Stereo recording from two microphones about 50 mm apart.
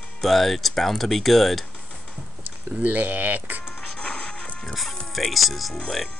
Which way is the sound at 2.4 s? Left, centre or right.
Right.